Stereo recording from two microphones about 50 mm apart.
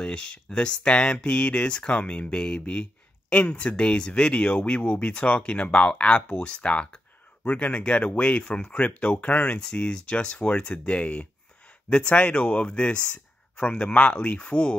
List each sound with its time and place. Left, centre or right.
0.0 s speech: centre